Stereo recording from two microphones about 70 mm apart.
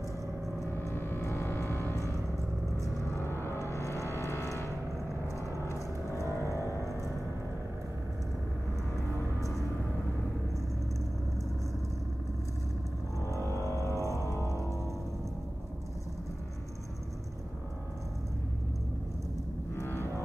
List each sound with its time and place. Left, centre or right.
0.9 s vehicle: left
2.8 s gong: left
5.7 s vehicle: left
6.4 s a sound: left
13.7 s music: left
19.7 s music: left